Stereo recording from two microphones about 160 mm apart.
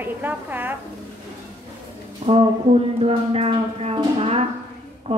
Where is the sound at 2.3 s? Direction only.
35° right (ahead or behind).